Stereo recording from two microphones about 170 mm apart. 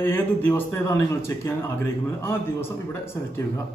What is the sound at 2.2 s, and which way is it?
Speech, 15° left (ahead or behind).